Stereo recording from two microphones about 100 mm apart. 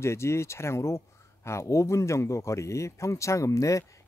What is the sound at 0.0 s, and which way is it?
Speech, 25° left (ahead or behind).